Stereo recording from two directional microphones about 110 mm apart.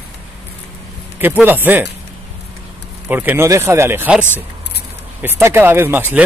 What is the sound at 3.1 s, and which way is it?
Speech, 15° right (ahead or behind).